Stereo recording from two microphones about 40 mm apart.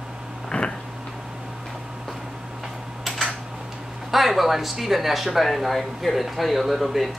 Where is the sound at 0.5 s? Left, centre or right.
Centre.